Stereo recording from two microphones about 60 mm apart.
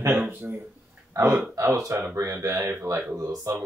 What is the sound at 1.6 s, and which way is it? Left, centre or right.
Speech, right.